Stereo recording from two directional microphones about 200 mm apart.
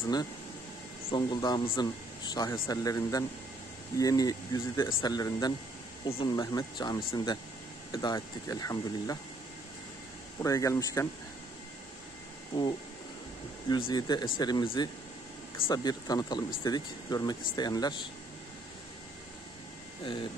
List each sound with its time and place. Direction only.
1.1 s speech: 20° left (ahead or behind)
10.4 s speech: 15° left (ahead or behind)
13.7 s speech: 25° left (ahead or behind)